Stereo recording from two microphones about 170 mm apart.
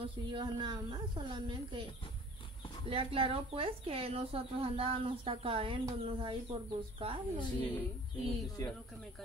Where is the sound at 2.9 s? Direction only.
35° right (ahead or behind).